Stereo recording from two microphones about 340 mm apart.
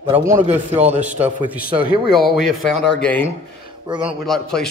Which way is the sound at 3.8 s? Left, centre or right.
Centre.